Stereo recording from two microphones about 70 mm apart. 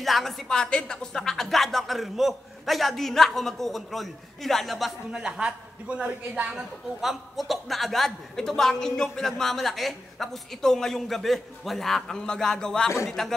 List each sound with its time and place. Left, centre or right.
0.0 s a man's voice: centre
5.2 s a man's voice: centre
6.5 s a man's voice: centre